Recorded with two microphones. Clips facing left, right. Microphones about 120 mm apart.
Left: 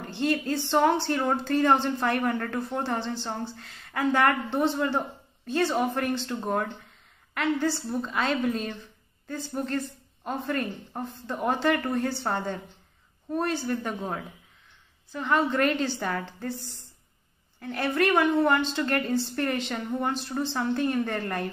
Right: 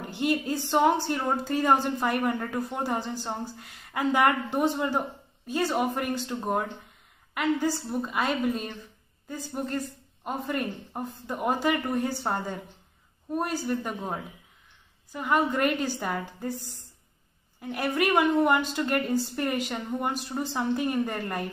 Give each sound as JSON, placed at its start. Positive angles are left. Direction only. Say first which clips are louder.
{"t": 0.0, "sound": "a woman's voice", "louder": "even", "side_deg": -15}
{"t": 17.6, "sound": "a woman's voice", "louder": "left 1 dB", "side_deg": -10}